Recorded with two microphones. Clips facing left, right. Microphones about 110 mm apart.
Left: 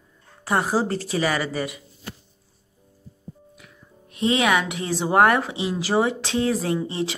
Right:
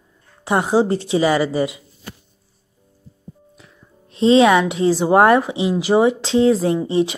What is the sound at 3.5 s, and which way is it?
Speech, 25° right (ahead or behind).